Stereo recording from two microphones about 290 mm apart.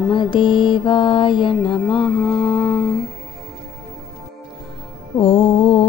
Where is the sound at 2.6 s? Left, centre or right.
Centre.